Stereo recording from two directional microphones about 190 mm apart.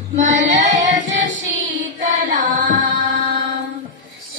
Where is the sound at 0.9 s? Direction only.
70° right (ahead or behind).